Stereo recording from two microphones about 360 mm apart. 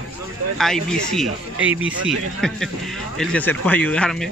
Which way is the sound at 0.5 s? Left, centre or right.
Centre.